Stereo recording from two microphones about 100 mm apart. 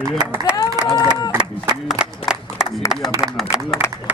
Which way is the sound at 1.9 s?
10° right (ahead or behind).